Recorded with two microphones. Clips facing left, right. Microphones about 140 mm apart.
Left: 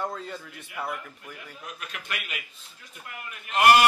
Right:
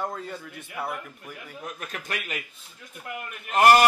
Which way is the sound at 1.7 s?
45° right (ahead or behind).